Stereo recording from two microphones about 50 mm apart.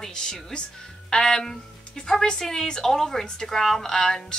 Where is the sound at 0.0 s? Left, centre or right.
Centre.